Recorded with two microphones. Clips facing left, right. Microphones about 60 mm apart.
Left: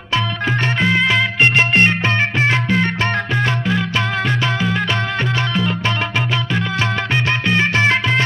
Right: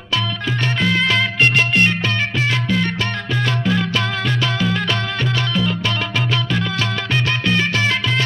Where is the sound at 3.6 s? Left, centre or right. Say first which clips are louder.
Even; centre.